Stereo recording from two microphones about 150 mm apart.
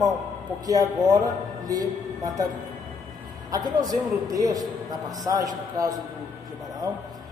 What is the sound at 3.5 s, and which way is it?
A man's voice, 25° right (ahead or behind).